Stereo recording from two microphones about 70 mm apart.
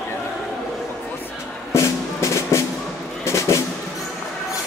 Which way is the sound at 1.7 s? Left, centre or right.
Left.